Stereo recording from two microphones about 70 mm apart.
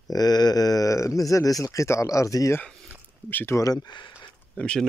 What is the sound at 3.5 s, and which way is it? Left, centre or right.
Speech, left.